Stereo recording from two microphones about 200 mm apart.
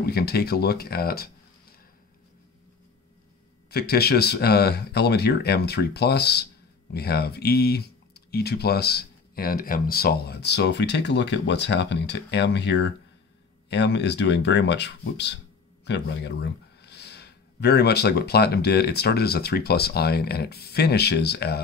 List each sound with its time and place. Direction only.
0.0 s speech: 50° left (ahead or behind)
3.7 s speech: 50° left (ahead or behind)